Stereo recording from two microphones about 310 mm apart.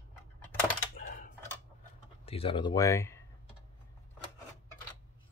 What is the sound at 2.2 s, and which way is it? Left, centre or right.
Speech, centre.